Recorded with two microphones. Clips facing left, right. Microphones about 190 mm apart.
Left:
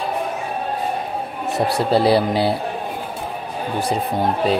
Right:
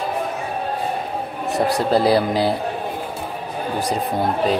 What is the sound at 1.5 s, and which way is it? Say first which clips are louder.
Speech: even; centre (ahead or behind).